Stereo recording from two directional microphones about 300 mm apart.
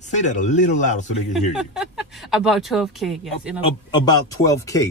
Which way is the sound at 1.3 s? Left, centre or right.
Centre.